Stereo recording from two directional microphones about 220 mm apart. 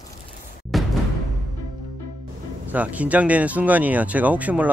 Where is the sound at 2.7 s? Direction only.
5° right (ahead or behind).